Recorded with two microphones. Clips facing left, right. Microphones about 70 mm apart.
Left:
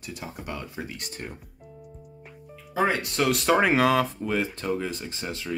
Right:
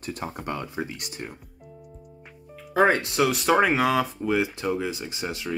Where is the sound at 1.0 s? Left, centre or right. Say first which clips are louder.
Right 1 dB; centre.